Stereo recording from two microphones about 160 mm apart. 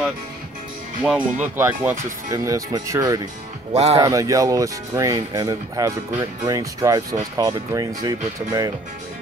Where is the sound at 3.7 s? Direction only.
40° right (ahead or behind).